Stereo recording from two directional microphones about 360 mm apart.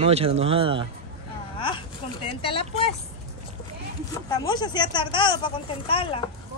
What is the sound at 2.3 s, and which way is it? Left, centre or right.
Speech, centre.